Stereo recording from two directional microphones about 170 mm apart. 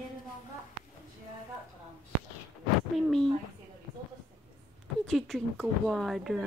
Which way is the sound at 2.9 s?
Centre (ahead or behind).